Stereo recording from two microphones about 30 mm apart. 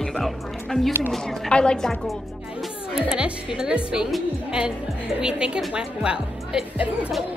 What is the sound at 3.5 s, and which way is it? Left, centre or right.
Speech, right.